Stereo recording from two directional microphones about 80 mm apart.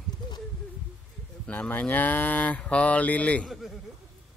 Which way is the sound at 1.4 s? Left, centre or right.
Centre.